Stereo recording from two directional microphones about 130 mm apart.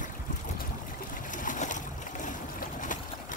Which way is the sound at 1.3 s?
90° left.